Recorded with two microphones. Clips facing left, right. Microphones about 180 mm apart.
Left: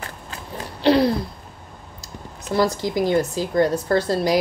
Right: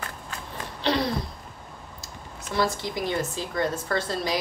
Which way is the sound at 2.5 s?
40° left (ahead or behind).